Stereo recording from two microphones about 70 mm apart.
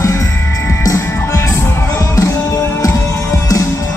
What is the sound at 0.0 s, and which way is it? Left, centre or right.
Music, left.